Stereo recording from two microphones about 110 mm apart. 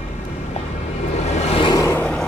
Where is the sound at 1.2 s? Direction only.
80° left.